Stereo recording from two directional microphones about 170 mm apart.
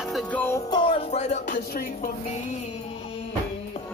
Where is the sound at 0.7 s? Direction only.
30° left (ahead or behind).